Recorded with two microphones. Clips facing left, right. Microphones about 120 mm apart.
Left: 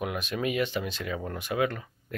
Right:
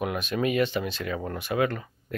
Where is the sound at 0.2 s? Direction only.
10° left (ahead or behind).